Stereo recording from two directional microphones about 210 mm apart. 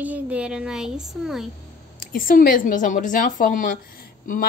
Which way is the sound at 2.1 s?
45° left (ahead or behind).